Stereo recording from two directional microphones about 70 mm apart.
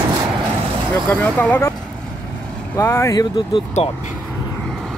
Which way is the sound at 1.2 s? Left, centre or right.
Left.